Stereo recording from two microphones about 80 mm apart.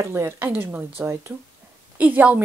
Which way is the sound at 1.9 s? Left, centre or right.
Centre.